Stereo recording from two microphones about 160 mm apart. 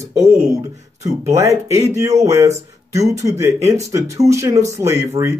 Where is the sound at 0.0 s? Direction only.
20° right (ahead or behind).